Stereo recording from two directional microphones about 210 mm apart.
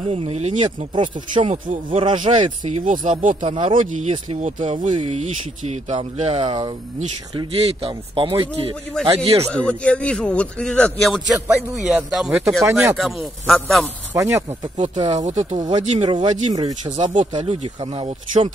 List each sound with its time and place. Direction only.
0.1 s speech: 30° right (ahead or behind)
3.4 s speech: 25° right (ahead or behind)
9.5 s a man's voice: 5° left (ahead or behind)
14.1 s speech: 15° right (ahead or behind)
15.2 s speech: 35° right (ahead or behind)